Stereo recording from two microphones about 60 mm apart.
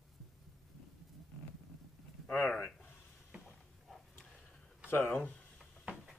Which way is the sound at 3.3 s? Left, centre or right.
Centre.